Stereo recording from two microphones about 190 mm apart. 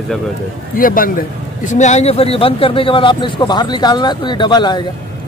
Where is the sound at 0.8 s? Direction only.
50° left (ahead or behind).